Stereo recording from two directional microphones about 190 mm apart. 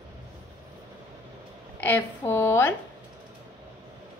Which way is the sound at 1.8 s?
10° left (ahead or behind).